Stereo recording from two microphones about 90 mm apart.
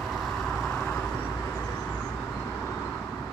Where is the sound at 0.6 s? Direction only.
10° left (ahead or behind).